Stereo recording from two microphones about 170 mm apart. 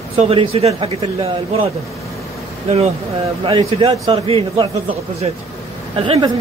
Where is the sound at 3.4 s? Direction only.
30° right (ahead or behind).